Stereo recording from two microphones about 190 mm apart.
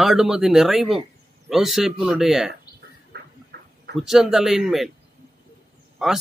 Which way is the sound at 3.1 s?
60° right (ahead or behind).